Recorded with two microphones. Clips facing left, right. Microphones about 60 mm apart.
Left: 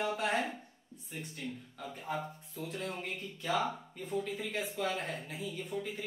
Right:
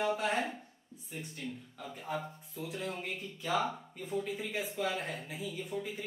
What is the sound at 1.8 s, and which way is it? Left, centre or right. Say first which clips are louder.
Speech: even; centre.